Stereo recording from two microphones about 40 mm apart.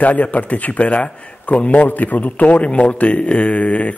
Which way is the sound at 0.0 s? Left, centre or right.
Left.